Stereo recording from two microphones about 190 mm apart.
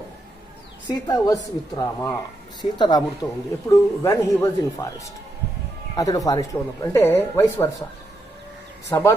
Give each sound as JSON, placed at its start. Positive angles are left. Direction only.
{"t": 0.8, "sound": "a woman's voice", "side_deg": 20}
{"t": 8.8, "sound": "speech", "side_deg": 15}